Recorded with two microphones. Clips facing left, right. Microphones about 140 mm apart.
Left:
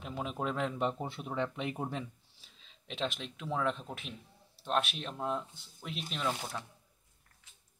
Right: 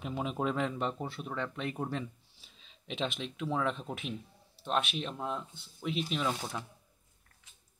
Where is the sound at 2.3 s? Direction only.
5° right (ahead or behind).